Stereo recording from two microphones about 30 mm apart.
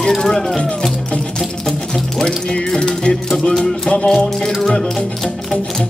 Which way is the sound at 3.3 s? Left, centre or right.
Centre.